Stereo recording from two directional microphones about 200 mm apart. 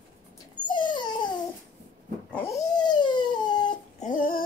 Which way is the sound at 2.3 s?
10° left (ahead or behind).